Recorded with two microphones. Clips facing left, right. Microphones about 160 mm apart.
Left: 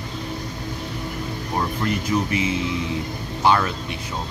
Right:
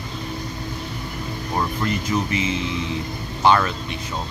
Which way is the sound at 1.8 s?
5° left (ahead or behind).